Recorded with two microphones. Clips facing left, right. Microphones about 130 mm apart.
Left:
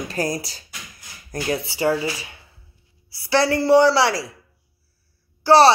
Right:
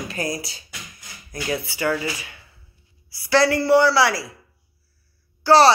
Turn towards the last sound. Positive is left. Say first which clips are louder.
# left 1 dB
turn(degrees=25)  # may be behind; listen again after turning